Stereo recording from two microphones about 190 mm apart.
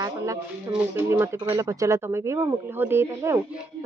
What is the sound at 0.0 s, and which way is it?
Speech, 15° right (ahead or behind).